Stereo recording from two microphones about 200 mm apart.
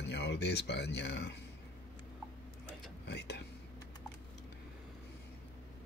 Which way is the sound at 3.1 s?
55° left (ahead or behind).